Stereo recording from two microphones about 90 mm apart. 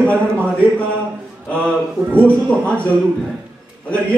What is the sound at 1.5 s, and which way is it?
Speech, 10° left (ahead or behind).